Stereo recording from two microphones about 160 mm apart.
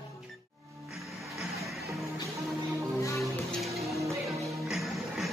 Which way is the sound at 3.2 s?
Centre (ahead or behind).